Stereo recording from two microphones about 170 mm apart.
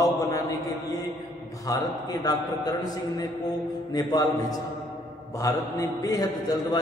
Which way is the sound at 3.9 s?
20° left (ahead or behind).